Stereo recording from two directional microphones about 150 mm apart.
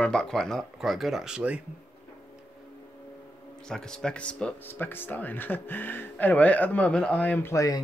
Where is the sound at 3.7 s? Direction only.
5° left (ahead or behind).